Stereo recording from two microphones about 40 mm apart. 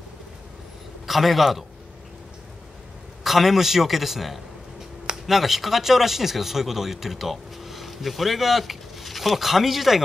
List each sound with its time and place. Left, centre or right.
1.0 s a man's voice: centre
3.3 s a man's voice: centre